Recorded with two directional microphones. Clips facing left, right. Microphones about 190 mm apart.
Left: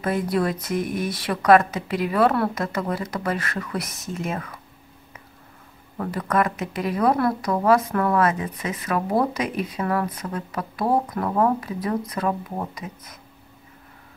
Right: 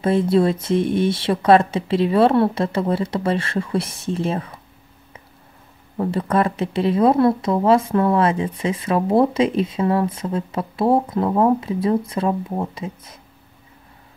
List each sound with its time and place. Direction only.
0.0 s speech: 25° right (ahead or behind)
5.9 s speech: 30° right (ahead or behind)